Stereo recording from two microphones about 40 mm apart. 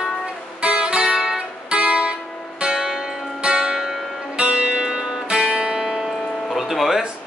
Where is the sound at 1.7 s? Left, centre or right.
Right.